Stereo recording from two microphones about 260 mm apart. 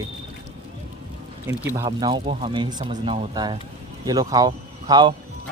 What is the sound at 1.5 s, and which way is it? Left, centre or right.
Speech, centre.